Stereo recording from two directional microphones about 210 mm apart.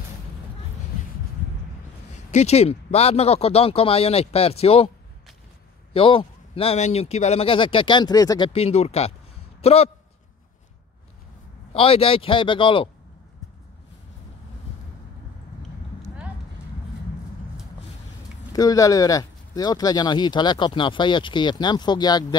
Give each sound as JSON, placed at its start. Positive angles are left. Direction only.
{"t": 2.1, "sound": "speech", "side_deg": 30}
{"t": 5.9, "sound": "a man's voice", "side_deg": 25}
{"t": 11.7, "sound": "speech", "side_deg": 25}
{"t": 18.5, "sound": "speech", "side_deg": 15}